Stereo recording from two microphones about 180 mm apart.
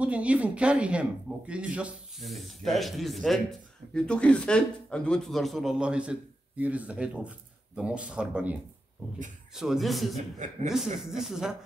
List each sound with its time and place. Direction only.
0.0 s speech: 5° right (ahead or behind)
10.4 s speech: 45° right (ahead or behind)
11.0 s speech: 5° right (ahead or behind)